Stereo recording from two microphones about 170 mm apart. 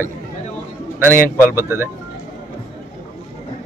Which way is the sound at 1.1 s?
15° left (ahead or behind).